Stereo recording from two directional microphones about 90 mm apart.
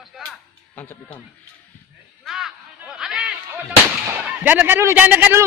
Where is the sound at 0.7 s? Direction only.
20° left (ahead or behind).